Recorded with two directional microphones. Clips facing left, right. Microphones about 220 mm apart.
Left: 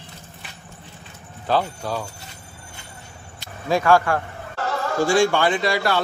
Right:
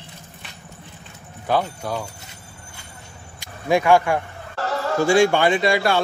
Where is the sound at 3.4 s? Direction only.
15° right (ahead or behind).